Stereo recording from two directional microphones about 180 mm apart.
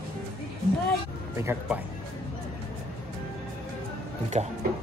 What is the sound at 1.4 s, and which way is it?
Speech, 15° right (ahead or behind).